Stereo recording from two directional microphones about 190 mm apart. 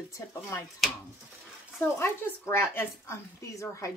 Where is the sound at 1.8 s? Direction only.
10° left (ahead or behind).